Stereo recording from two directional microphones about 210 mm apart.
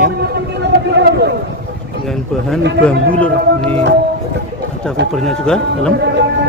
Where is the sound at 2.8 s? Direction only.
5° left (ahead or behind).